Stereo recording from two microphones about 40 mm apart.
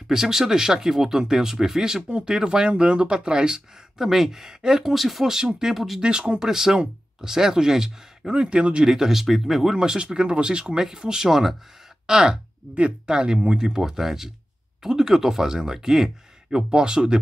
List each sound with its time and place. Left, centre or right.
0.1 s speech: centre
4.1 s speech: centre
5.3 s speech: centre
6.4 s speech: centre
9.2 s speech: centre
9.8 s speech: centre
12.1 s speech: centre